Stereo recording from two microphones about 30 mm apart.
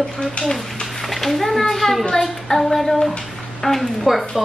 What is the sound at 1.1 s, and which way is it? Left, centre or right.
A child's voice, centre.